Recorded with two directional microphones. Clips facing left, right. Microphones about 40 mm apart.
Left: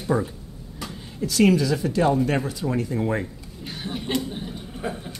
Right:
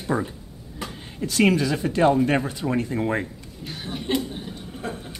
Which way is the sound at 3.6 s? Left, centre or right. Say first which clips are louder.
Left 1 dB; centre.